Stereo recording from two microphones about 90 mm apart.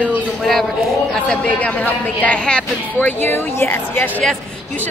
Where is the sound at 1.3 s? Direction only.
10° left (ahead or behind).